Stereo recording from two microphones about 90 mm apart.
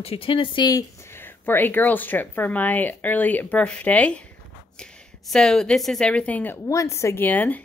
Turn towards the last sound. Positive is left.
turn(degrees=20)  # may be behind; listen again after turning